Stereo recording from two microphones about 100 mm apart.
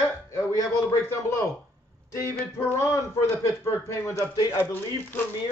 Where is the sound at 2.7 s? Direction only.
25° left (ahead or behind).